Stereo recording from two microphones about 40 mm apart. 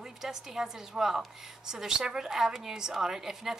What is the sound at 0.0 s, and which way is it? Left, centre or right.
A woman's voice, centre.